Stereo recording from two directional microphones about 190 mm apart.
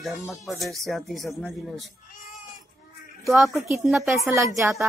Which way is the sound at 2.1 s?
45° left (ahead or behind).